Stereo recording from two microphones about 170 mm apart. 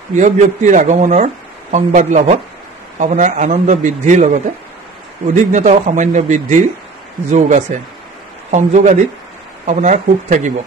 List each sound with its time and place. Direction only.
0.1 s speech: 45° right (ahead or behind)